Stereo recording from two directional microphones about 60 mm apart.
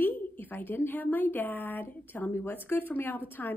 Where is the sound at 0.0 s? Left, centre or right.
Left.